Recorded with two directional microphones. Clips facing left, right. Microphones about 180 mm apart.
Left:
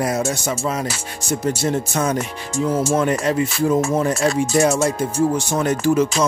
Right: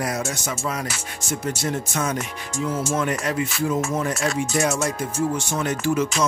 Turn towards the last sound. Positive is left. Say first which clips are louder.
# left 5 dB
turn(degrees=35)  # may be behind; listen again after turning